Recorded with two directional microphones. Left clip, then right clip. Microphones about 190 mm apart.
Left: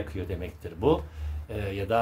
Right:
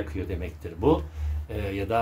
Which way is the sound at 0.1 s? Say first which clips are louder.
Right 1 dB; 15° left (ahead or behind).